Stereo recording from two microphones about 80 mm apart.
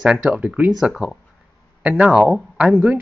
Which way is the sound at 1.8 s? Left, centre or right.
Centre.